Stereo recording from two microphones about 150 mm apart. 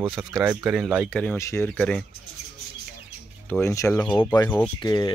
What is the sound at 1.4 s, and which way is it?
Speech, 20° left (ahead or behind).